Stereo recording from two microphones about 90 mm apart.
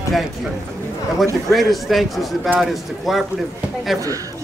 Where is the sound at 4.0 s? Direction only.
40° right (ahead or behind).